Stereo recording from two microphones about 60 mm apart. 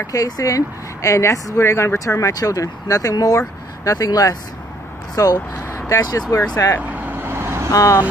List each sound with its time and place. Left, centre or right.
0.0 s a woman's voice: left
5.2 s a woman's voice: left
5.5 s vehicle: left
5.9 s speech: left
6.3 s a woman's voice: left
6.8 s vehicle: right
7.2 s vehicle: right
7.7 s speech: left